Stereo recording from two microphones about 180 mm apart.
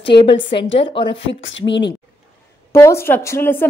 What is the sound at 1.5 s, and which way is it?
Speech, 85° left.